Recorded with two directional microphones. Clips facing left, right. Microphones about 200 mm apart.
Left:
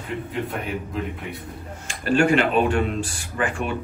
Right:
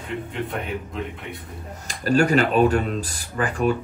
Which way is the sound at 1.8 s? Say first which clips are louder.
Even; 40° right (ahead or behind).